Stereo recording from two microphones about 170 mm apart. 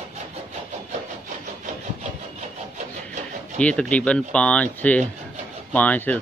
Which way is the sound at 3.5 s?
5° left (ahead or behind).